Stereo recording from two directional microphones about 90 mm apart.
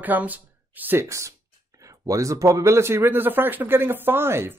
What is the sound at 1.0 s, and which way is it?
Speech, 35° right (ahead or behind).